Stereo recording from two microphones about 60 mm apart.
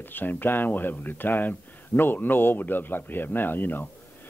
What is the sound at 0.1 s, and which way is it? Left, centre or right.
Speech, left.